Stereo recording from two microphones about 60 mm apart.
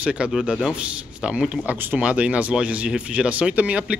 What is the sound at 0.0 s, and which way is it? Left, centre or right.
Speech, centre.